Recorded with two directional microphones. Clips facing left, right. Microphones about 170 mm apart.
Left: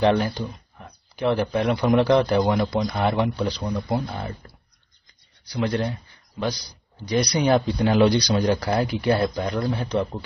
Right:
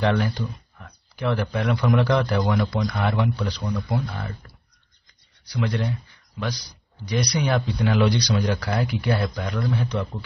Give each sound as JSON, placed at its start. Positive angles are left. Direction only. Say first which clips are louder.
{"t": 0.0, "sound": "speech", "louder": "left 3 dB", "side_deg": 25}
{"t": 5.5, "sound": "speech", "louder": "left 2 dB", "side_deg": 35}
{"t": 7.1, "sound": "speech", "louder": "left 4 dB", "side_deg": 30}